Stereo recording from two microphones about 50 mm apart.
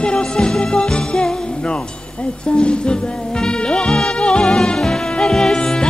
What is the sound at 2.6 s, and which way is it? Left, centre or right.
Music, centre.